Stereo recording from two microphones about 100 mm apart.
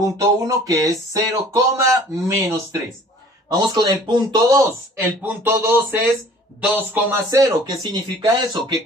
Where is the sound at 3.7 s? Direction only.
45° right (ahead or behind).